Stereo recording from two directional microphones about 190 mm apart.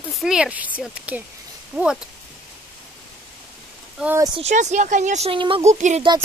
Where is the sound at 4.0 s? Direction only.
10° right (ahead or behind).